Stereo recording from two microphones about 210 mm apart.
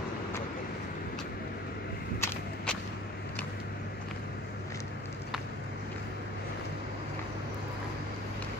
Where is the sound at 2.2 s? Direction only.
5° left (ahead or behind).